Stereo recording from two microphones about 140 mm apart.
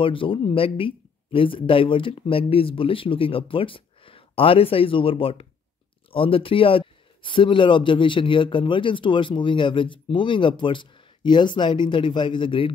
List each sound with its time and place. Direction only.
0.0 s speech: 40° left (ahead or behind)